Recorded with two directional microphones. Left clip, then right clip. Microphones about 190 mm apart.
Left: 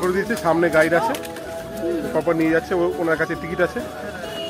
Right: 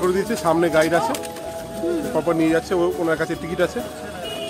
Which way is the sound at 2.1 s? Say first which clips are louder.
Left 1 dB; 10° right (ahead or behind).